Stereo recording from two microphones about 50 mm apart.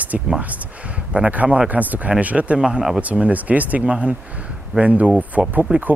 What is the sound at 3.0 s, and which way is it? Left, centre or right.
Speech, right.